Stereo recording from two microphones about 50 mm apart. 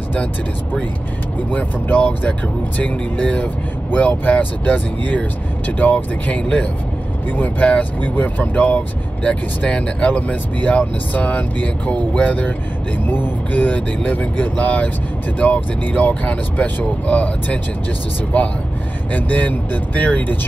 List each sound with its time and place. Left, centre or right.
1.5 s speech: left
13.0 s speech: left
19.1 s speech: left